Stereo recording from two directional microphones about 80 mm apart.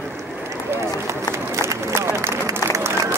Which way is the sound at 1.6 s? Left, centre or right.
Right.